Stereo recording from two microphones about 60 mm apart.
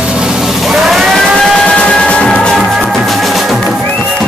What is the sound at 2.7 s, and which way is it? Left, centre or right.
Music, centre.